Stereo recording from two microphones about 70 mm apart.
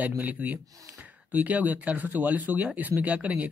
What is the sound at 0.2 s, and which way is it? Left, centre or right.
Speech, right.